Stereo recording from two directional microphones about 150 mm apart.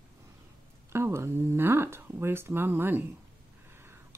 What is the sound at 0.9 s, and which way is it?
Speech, 15° right (ahead or behind).